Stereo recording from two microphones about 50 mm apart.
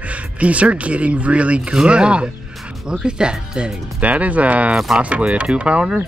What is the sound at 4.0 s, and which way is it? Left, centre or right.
Speech, right.